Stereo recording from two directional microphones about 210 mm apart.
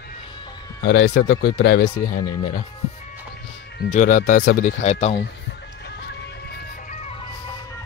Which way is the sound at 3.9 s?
35° left (ahead or behind).